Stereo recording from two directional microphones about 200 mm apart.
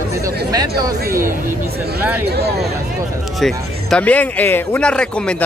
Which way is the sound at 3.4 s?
5° left (ahead or behind).